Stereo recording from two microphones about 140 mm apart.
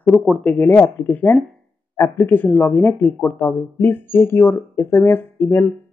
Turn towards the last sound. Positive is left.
turn(degrees=15)  # may be behind; listen again after turning